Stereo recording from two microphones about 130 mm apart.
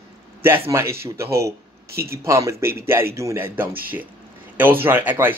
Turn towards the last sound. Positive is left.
turn(degrees=-15)  # may be behind; listen again after turning